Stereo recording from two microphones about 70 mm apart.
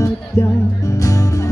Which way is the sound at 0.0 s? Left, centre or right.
Left.